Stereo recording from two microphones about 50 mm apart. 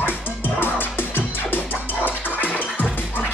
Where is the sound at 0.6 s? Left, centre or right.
Left.